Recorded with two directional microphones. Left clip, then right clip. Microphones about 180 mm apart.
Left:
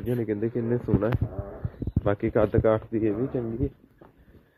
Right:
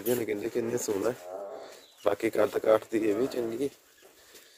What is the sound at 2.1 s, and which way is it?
Speech, 20° right (ahead or behind).